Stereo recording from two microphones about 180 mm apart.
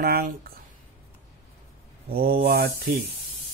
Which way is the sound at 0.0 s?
55° right (ahead or behind).